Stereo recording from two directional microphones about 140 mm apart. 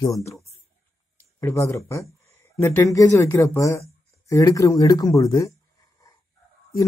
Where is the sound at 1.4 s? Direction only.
20° left (ahead or behind).